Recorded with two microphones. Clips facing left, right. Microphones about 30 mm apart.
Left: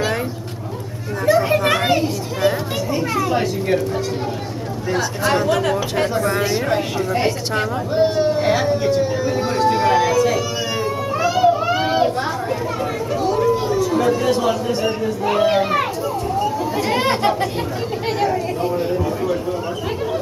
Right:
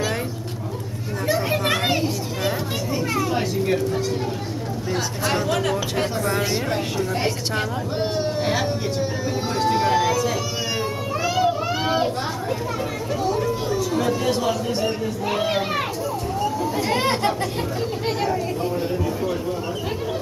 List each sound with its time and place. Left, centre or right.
1.2 s children playing: centre
3.2 s speech: centre
4.9 s speech: centre
11.2 s baby cry: centre
11.7 s children playing: centre
13.2 s speech: centre